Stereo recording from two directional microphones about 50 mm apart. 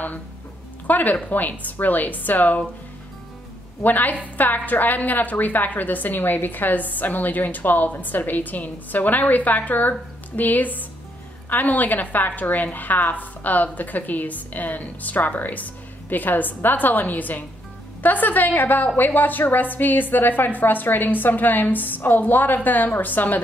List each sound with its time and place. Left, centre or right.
0.8 s a woman's voice: left
3.8 s a woman's voice: left